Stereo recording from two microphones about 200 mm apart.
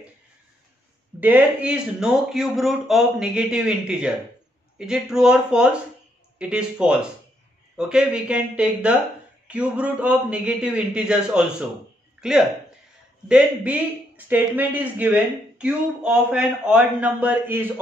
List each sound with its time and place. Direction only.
1.2 s speech: 5° right (ahead or behind)